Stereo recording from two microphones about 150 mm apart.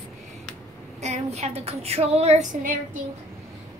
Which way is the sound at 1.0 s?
45° right (ahead or behind).